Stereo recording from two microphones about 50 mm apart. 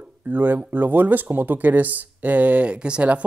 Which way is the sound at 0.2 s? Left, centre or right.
Right.